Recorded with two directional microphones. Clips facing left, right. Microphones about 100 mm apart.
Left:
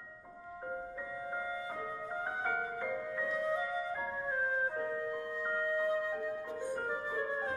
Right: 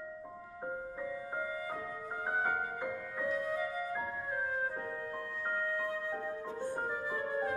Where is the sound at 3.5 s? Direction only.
25° left (ahead or behind).